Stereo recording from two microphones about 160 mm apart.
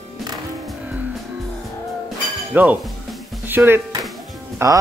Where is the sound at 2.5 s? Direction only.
10° right (ahead or behind).